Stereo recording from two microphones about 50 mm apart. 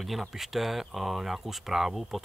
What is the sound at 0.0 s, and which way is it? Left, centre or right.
Speech, centre.